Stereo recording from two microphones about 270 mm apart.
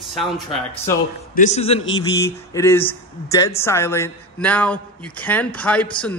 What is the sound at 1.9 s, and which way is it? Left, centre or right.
A man's voice, centre.